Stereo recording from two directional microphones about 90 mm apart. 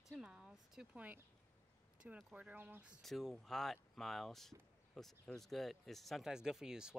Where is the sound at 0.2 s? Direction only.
10° right (ahead or behind).